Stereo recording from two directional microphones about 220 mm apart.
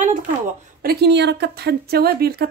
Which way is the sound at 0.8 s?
45° right (ahead or behind).